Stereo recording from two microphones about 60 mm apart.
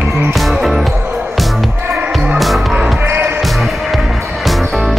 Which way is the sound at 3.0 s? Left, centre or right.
Right.